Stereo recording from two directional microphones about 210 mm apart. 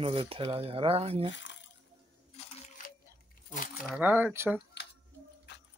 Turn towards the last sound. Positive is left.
turn(degrees=-10)  # may be behind; listen again after turning